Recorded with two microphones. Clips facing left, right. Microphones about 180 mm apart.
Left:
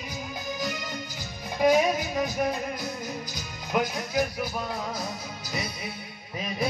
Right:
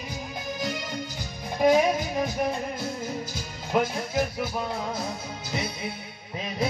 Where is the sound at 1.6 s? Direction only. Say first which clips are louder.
Right 1 dB; 25° right (ahead or behind).